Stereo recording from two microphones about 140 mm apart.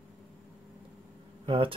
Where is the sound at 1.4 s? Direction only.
40° right (ahead or behind).